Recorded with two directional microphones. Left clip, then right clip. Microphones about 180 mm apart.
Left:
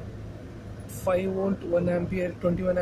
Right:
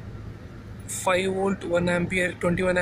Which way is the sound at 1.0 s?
15° right (ahead or behind).